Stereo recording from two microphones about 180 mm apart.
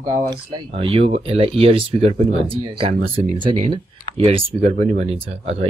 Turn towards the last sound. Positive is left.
turn(degrees=-35)  # may be behind; listen again after turning